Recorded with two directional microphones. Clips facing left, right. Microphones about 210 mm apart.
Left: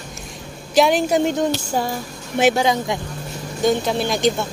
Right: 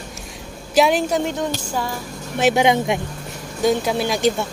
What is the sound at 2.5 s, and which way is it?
Speech, 20° right (ahead or behind).